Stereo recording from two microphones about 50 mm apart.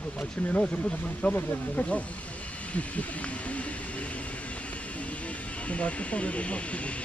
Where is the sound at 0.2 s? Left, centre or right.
Left.